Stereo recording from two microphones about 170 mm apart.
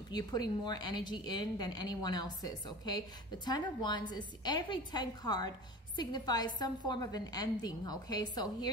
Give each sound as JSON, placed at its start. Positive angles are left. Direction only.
{"t": 0.1, "sound": "a woman's voice", "side_deg": 25}